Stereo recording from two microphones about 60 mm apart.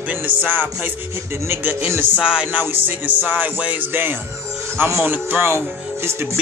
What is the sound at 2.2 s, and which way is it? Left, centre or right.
Music, centre.